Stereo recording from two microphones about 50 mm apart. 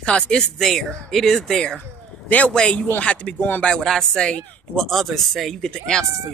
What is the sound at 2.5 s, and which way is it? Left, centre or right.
Speech, centre.